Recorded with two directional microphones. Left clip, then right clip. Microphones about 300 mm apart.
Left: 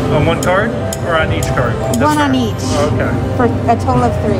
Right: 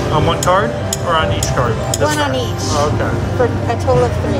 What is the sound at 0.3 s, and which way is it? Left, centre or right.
Speech, centre.